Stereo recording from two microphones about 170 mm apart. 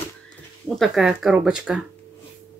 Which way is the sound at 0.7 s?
Centre (ahead or behind).